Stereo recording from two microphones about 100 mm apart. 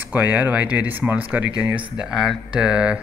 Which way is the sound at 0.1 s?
15° right (ahead or behind).